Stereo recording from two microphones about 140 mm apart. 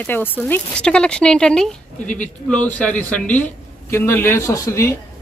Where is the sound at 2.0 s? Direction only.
60° left (ahead or behind).